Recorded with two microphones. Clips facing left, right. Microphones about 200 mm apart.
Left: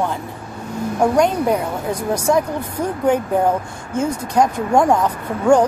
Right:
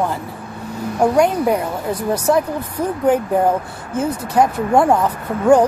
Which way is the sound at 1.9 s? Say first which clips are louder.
Right 2 dB; 10° left (ahead or behind).